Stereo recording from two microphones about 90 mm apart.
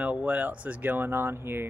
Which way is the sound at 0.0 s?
15° right (ahead or behind).